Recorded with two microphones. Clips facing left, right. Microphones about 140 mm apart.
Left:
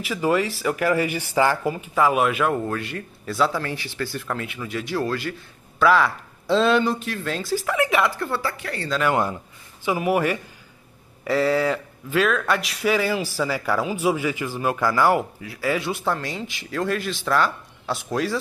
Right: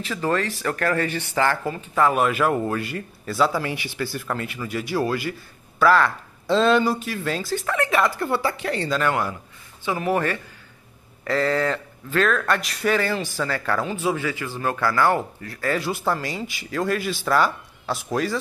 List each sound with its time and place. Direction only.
0.0 s speech: 10° left (ahead or behind)
3.6 s speech: 15° right (ahead or behind); by 8.1 s 5° left (ahead or behind)
8.2 s speech: 15° right (ahead or behind)
9.1 s a man's voice: 20° left (ahead or behind); by 18.4 s centre (ahead or behind)